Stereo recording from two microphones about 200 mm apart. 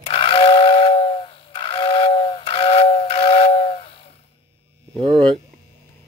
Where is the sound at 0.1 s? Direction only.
30° left (ahead or behind).